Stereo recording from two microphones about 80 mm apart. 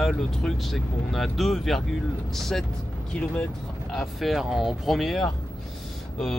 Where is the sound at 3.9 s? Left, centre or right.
Centre.